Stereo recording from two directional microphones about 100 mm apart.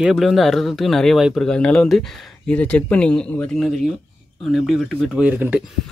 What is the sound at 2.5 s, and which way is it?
Speech, 15° left (ahead or behind).